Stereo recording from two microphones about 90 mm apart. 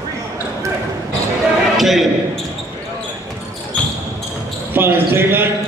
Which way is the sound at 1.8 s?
Centre (ahead or behind).